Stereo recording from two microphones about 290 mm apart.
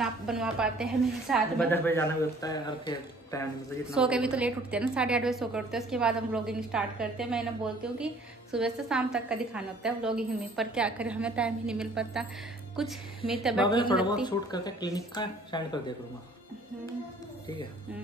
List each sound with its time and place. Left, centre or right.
0.0 s a woman's voice: centre
3.9 s a woman's voice: centre
13.7 s a woman's voice: centre